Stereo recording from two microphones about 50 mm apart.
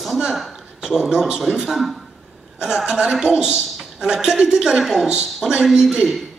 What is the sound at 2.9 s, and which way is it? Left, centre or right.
A woman's voice, centre.